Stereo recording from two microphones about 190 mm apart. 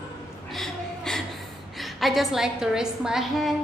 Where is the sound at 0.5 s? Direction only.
Centre (ahead or behind).